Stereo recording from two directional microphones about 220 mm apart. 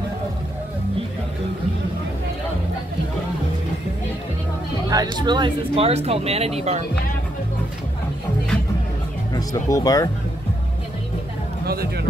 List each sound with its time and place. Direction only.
4.8 s speech: 15° right (ahead or behind)
9.3 s speech: 15° left (ahead or behind)
11.6 s speech: 45° right (ahead or behind)